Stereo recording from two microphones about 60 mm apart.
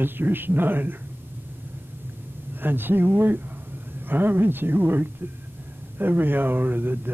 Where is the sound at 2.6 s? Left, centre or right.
Right.